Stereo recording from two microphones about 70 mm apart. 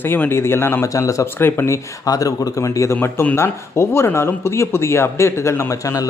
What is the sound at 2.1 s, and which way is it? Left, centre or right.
Speech, left.